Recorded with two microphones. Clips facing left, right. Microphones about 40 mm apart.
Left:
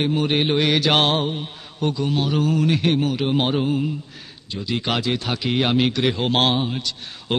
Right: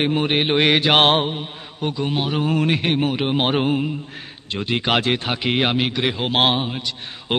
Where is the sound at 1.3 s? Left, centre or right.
Centre.